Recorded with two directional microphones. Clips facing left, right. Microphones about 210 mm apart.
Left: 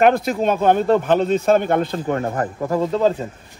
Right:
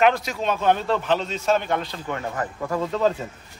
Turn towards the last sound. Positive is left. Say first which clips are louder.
# left 4 dB
turn(degrees=30)  # may be behind; listen again after turning